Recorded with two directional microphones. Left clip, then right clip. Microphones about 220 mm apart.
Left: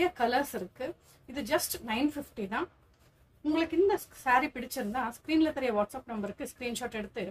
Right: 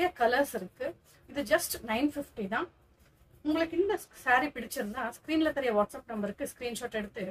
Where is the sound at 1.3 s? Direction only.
5° right (ahead or behind).